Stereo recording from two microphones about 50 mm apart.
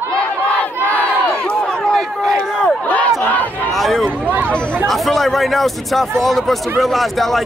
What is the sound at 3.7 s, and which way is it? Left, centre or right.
Speech, centre.